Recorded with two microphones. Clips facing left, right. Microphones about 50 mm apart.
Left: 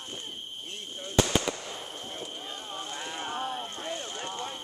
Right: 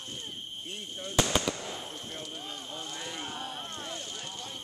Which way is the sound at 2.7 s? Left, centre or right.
Left.